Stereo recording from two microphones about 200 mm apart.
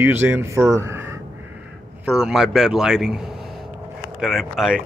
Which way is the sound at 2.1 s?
5° right (ahead or behind).